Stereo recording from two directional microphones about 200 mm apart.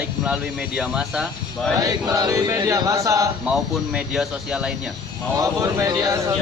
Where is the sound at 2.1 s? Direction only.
20° right (ahead or behind).